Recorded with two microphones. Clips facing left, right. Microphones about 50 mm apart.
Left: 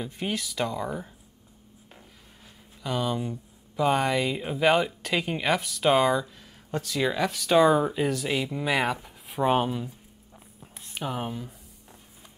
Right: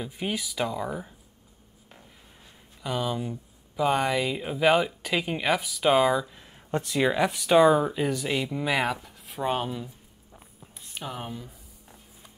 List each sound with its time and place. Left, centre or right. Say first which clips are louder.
0.0 s speech: even; centre
2.8 s speech: left 1 dB; centre
6.3 s speech: right 3 dB; right; by 7.7 s centre
7.7 s speech: even; centre
9.0 s a sound: left 4 dB; centre